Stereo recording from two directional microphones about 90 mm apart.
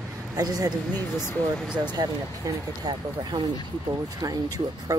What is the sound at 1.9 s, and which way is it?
Speech, 50° right (ahead or behind).